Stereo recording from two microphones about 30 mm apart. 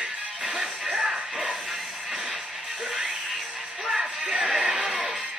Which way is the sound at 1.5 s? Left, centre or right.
Centre.